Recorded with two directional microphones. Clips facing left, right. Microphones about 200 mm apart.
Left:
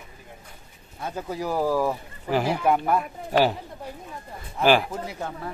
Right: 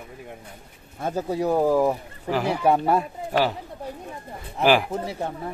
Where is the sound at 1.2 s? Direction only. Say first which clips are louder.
Right 4 dB; 25° right (ahead or behind).